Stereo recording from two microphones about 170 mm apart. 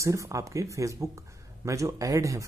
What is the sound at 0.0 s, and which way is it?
Speech, 20° right (ahead or behind).